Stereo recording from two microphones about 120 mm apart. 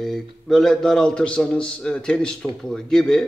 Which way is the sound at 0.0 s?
Centre (ahead or behind).